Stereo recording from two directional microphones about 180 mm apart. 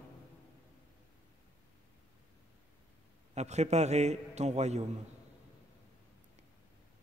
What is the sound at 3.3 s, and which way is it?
A man's voice, 40° right (ahead or behind).